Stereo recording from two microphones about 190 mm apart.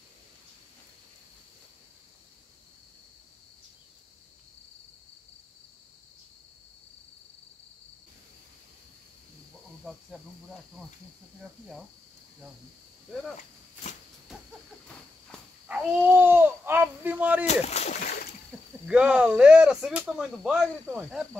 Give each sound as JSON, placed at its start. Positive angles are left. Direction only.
{"t": 15.7, "sound": "speech", "side_deg": -10}
{"t": 17.5, "sound": "speech", "side_deg": 35}
{"t": 18.5, "sound": "cricket", "side_deg": -10}
{"t": 18.9, "sound": "speech", "side_deg": -5}